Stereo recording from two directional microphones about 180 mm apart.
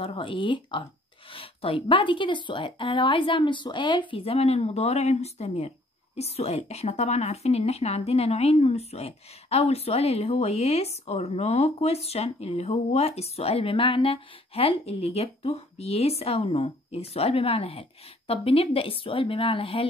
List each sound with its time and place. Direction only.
0.0 s a woman's voice: 30° left (ahead or behind)